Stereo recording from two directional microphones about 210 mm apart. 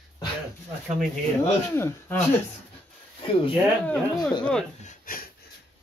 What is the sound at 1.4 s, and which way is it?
Speech, 10° left (ahead or behind).